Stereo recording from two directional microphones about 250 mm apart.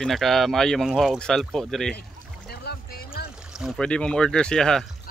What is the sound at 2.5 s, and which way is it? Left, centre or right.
Boat, left.